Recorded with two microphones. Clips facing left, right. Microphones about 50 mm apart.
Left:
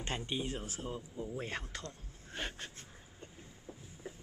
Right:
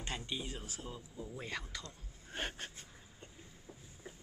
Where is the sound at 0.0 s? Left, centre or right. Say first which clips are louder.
Left 4 dB; left.